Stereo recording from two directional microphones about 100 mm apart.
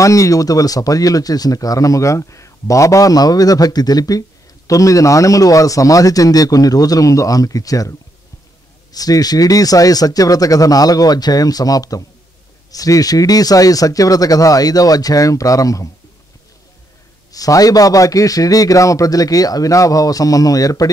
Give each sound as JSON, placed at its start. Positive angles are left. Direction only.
{"t": 0.0, "sound": "speech", "side_deg": 35}
{"t": 8.9, "sound": "speech", "side_deg": 40}
{"t": 17.3, "sound": "speech", "side_deg": 35}